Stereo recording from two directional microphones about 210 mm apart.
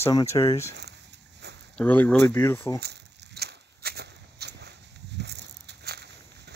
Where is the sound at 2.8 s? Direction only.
55° right (ahead or behind).